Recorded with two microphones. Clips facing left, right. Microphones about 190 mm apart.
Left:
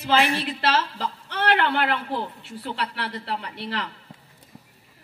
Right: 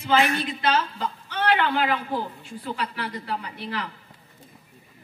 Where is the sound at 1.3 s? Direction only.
70° left (ahead or behind).